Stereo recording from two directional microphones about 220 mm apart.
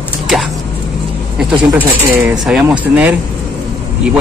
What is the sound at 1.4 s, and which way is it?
A man's voice, centre (ahead or behind).